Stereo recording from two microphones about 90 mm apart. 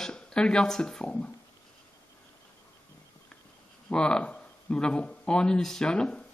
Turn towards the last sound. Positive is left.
turn(degrees=10)  # may be behind; listen again after turning